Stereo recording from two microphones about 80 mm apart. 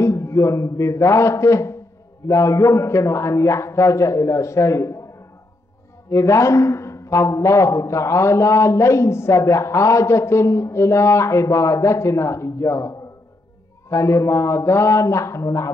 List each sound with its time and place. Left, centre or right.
0.0 s a man's voice: left
6.0 s a man's voice: left